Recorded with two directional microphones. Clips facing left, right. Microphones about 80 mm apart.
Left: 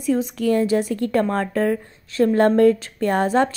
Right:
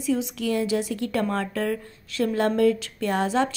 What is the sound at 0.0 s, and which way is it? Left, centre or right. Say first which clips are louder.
A woman's voice: left 5 dB; left.